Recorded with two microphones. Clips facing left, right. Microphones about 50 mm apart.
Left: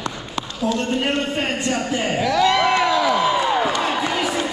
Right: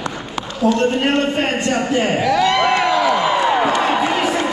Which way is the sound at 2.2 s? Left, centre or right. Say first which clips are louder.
Left 1 dB; right.